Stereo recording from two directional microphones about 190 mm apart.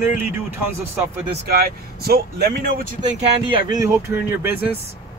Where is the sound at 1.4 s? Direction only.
55° right (ahead or behind).